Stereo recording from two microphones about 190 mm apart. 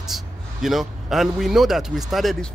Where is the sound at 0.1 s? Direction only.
Centre (ahead or behind).